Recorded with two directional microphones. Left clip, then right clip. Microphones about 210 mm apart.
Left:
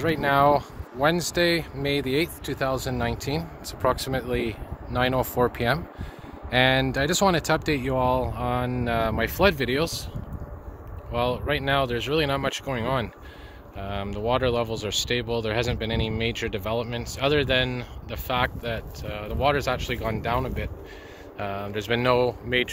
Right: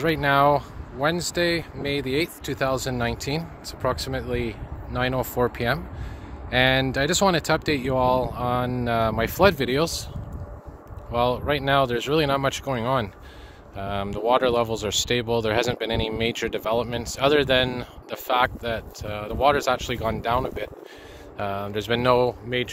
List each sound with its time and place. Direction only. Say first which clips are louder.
0.0 s speech: right 1 dB; 10° right (ahead or behind)
2.4 s speech: right 2 dB; 15° right (ahead or behind)
3.6 s speech: left 2 dB; 10° left (ahead or behind); by 10.0 s 25° right (ahead or behind)
11.1 s speech: right 3 dB; 25° right (ahead or behind)